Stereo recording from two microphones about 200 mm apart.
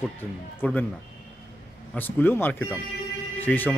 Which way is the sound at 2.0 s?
10° left (ahead or behind).